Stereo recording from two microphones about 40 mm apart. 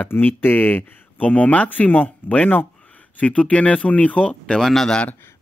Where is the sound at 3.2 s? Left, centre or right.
Left.